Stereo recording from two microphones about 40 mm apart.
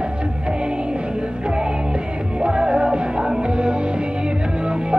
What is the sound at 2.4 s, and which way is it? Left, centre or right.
Music, right.